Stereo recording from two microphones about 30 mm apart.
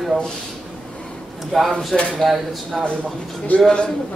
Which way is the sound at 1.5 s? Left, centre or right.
Centre.